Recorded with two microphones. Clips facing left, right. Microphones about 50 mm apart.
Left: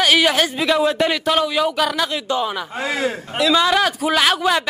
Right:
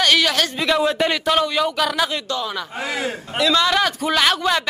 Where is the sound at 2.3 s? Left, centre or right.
Left.